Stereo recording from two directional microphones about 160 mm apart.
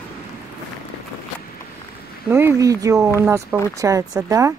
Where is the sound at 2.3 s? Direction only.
15° right (ahead or behind).